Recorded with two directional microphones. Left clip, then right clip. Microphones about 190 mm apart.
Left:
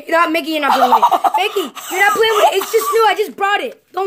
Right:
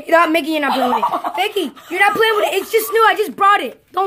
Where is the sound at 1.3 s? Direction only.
Centre (ahead or behind).